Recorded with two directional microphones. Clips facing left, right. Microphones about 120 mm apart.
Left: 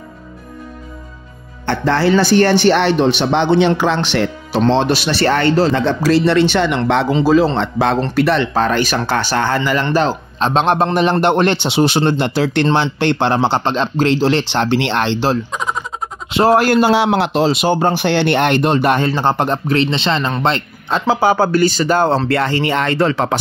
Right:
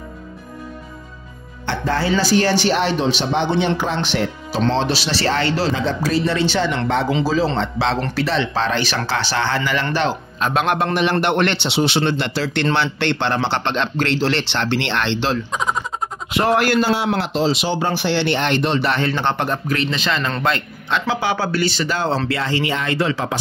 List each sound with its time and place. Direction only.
1.7 s a man's voice: 70° left (ahead or behind)
4.7 s speech: 55° left (ahead or behind)
9.9 s a man's voice: 35° left (ahead or behind)
11.5 s speech: 50° left (ahead or behind)
13.5 s speech: 35° left (ahead or behind)
15.5 s a sound: centre (ahead or behind)
16.3 s speech: 30° left (ahead or behind)
16.9 s speech: 80° left; by 23.3 s 60° left (ahead or behind)